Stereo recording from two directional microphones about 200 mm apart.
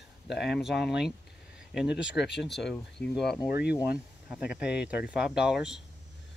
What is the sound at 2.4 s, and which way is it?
Speech, centre (ahead or behind).